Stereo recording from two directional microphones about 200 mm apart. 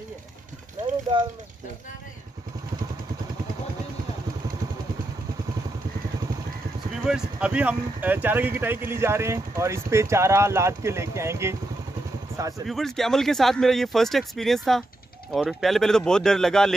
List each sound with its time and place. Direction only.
7.1 s speech: 5° right (ahead or behind)
12.6 s speech: centre (ahead or behind)